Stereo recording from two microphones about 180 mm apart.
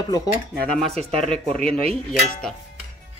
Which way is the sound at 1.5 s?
35° right (ahead or behind).